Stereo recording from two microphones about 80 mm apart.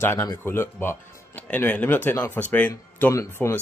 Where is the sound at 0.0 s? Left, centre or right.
Left.